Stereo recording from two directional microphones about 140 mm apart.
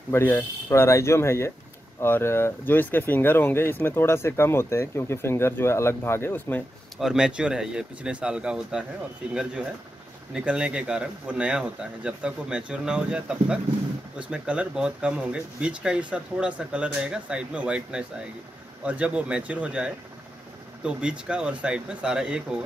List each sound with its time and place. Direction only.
0.1 s speech: 15° left (ahead or behind)
7.0 s speech: 5° right (ahead or behind)